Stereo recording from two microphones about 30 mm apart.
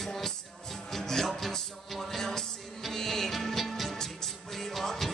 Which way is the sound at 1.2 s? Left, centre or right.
Centre.